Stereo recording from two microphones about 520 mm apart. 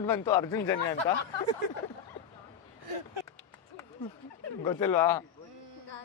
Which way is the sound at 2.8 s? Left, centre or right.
Right.